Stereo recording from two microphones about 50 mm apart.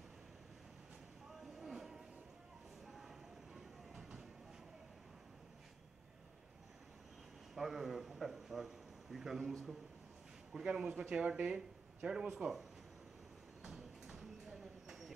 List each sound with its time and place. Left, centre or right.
1.6 s music: centre
2.9 s train: centre
7.5 s a man's voice: centre
13.7 s clip-clop: centre